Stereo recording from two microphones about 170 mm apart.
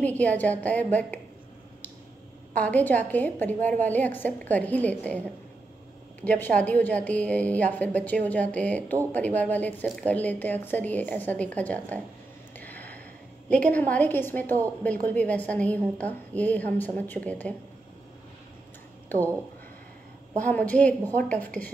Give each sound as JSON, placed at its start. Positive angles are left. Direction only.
{"t": 0.0, "sound": "a woman's voice", "side_deg": 10}
{"t": 2.5, "sound": "a woman's voice", "side_deg": 10}
{"t": 6.2, "sound": "a woman's voice", "side_deg": 10}
{"t": 12.5, "sound": "a sound", "side_deg": 10}
{"t": 13.5, "sound": "a woman's voice", "side_deg": 10}
{"t": 20.4, "sound": "a woman's voice", "side_deg": 10}